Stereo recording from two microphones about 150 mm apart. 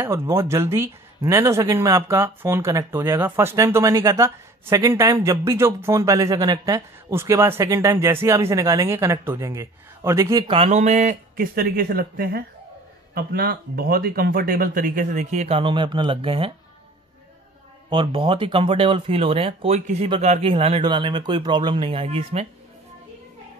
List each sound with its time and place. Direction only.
0.3 s speech: 20° right (ahead or behind)
10.4 s speech: 40° right (ahead or behind)
11.5 s speech: 90° right; by 16.5 s 35° right (ahead or behind)
17.8 s speech: 35° right (ahead or behind)